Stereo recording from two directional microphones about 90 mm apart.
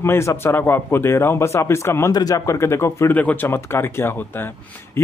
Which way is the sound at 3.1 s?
20° left (ahead or behind).